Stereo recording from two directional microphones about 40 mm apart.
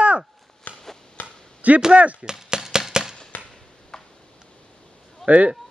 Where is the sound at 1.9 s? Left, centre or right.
Right.